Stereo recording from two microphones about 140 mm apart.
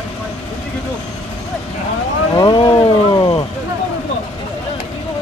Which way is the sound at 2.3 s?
30° left (ahead or behind).